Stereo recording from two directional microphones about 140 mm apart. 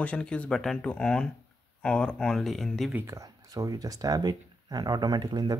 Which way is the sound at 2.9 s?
15° right (ahead or behind).